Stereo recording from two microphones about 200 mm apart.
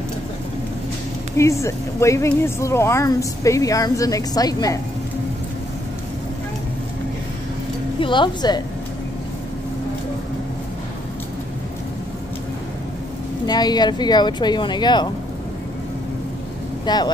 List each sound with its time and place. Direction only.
1.3 s speech: 15° left (ahead or behind)
8.0 s a woman's voice: 25° left (ahead or behind)
13.5 s a woman's voice: 20° left (ahead or behind)
16.8 s speech: 20° left (ahead or behind)